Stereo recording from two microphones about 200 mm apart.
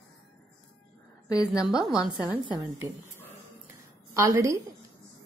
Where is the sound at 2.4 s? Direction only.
15° right (ahead or behind).